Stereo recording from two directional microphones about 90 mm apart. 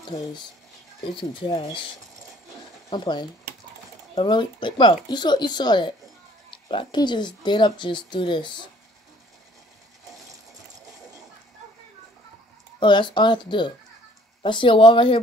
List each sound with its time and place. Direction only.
0.0 s speech: 55° left (ahead or behind)
1.0 s speech: 70° left (ahead or behind)
2.9 s speech: 60° left (ahead or behind)
6.5 s a sound: 70° left (ahead or behind)
7.0 s speech: 55° left (ahead or behind)
10.9 s a sound: 40° right (ahead or behind)
12.8 s speech: 60° left (ahead or behind)